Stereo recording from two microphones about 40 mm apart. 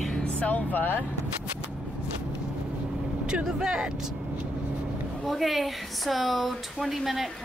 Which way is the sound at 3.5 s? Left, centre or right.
Centre.